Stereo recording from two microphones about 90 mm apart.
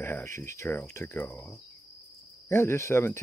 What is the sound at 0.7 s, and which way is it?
Speech, 20° left (ahead or behind).